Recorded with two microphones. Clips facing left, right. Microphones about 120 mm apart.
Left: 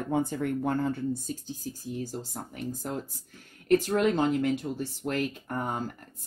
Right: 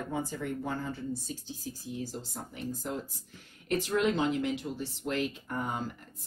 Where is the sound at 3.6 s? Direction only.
45° left (ahead or behind).